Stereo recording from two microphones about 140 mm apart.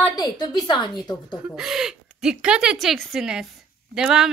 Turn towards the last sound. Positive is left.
turn(degrees=-5)  # may be behind; listen again after turning